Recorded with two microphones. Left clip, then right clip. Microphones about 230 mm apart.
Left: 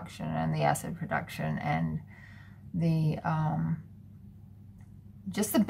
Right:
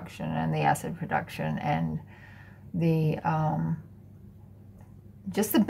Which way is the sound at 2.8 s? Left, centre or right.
Left.